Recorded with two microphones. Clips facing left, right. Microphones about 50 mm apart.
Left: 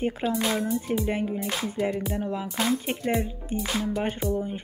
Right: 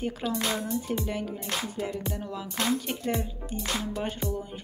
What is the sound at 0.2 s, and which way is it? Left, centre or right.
Speech, left.